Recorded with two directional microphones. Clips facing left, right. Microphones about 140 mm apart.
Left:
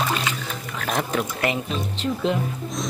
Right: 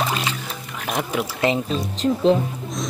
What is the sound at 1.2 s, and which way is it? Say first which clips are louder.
Speech: right 4 dB; 30° right (ahead or behind).